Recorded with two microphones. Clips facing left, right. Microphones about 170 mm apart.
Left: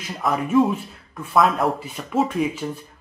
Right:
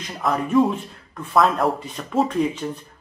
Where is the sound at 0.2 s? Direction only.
Centre (ahead or behind).